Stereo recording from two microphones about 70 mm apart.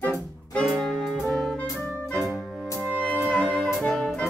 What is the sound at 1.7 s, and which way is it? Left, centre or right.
Music, left.